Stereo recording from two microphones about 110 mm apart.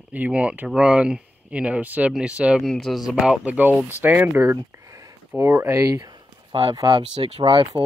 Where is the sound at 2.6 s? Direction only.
5° left (ahead or behind).